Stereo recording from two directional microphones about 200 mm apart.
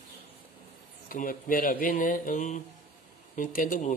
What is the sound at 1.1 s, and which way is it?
Speech, 45° left (ahead or behind).